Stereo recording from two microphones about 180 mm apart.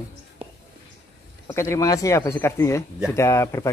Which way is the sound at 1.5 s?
15° left (ahead or behind).